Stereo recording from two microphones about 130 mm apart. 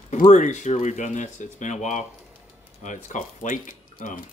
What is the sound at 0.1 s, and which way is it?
Speech, 70° left (ahead or behind).